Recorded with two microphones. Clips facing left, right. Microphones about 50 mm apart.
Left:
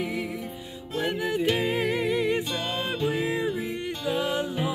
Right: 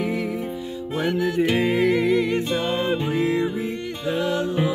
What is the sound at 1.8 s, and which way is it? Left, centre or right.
Music, centre.